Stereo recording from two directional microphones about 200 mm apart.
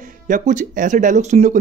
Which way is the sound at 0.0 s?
40° right (ahead or behind).